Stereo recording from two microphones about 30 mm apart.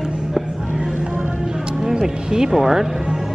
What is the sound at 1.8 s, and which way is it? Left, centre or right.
Speech, right.